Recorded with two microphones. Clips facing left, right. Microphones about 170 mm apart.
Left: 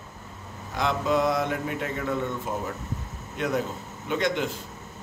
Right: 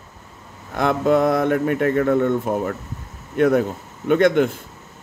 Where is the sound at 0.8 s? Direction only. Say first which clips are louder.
Right 7 dB; 55° right (ahead or behind).